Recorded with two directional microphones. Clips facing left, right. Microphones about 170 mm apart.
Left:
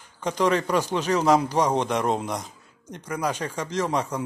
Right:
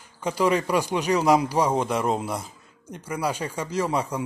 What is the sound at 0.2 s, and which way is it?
A man's voice, 10° right (ahead or behind).